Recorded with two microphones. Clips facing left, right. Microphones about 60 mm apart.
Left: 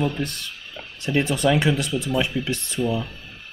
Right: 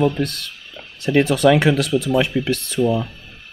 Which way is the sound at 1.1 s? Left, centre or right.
Right.